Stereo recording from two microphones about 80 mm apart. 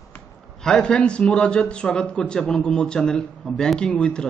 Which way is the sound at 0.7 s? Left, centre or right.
Centre.